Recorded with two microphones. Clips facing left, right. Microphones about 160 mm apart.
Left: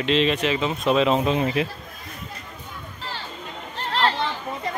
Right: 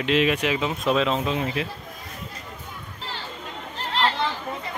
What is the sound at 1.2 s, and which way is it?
Speech, 20° left (ahead or behind).